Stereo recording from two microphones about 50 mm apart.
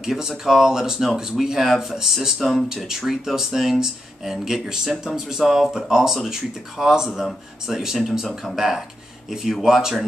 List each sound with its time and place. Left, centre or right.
0.0 s speech: centre